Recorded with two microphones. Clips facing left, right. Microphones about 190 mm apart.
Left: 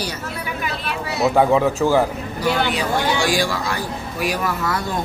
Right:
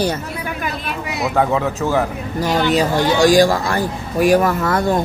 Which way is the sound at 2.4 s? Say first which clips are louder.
Right 4 dB; 40° right (ahead or behind).